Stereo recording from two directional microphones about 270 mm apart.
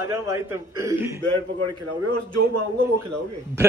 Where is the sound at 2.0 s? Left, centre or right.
Right.